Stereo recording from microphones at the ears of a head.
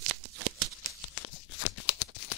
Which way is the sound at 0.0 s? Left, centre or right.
Right.